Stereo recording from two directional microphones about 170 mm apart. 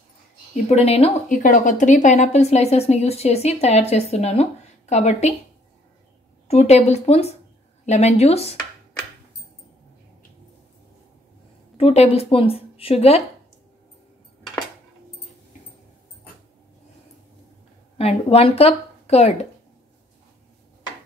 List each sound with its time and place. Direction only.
0.7 s a woman's voice: 35° left (ahead or behind)
1.3 s a woman's voice: 50° left (ahead or behind)
6.4 s a woman's voice: 40° left (ahead or behind)
11.7 s a woman's voice: 35° left (ahead or behind)
17.9 s a woman's voice: 35° left (ahead or behind)